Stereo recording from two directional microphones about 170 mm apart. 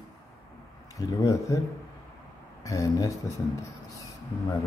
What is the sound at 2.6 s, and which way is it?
Speech, 20° left (ahead or behind).